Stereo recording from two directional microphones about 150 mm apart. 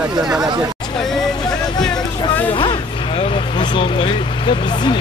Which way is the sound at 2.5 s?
30° left (ahead or behind).